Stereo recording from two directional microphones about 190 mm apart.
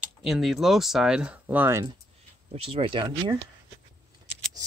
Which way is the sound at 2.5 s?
30° right (ahead or behind).